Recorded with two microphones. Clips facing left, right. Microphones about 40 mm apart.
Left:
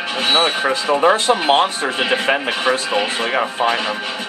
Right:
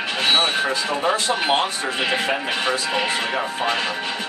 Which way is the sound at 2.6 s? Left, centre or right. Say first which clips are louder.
Left 5 dB; centre.